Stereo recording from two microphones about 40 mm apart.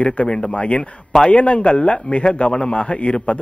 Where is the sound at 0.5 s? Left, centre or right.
Left.